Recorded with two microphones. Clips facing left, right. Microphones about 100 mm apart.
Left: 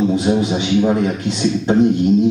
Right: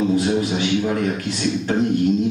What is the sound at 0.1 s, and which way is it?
A man's voice, 20° left (ahead or behind).